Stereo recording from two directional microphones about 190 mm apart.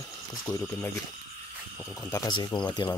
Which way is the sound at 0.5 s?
15° left (ahead or behind).